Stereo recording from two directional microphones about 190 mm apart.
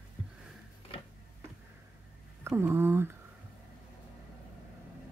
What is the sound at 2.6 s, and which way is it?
Speech, 10° right (ahead or behind).